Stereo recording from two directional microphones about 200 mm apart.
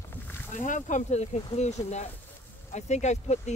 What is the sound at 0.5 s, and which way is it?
Speech, 40° left (ahead or behind).